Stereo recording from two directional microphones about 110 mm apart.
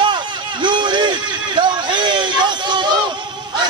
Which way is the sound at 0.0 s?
45° right (ahead or behind).